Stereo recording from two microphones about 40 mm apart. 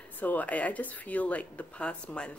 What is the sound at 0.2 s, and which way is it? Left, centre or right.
Speech, left.